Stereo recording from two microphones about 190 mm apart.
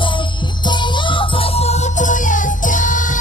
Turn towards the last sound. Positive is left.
turn(degrees=45)  # may be behind; listen again after turning